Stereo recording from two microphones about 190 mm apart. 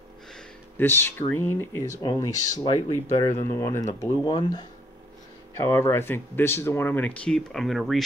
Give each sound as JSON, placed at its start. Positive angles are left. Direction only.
{"t": 0.3, "sound": "speech", "side_deg": 10}
{"t": 5.6, "sound": "speech", "side_deg": 15}